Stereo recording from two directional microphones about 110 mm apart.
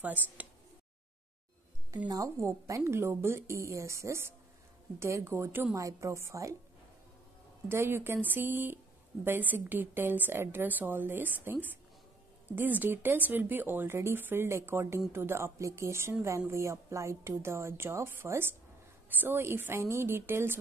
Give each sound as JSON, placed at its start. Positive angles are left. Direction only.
{"t": 0.0, "sound": "a woman's voice", "side_deg": -15}
{"t": 2.0, "sound": "a woman's voice", "side_deg": -30}
{"t": 7.6, "sound": "a woman's voice", "side_deg": -20}